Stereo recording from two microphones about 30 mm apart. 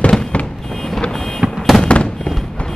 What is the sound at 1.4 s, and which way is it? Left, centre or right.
Fireworks, right.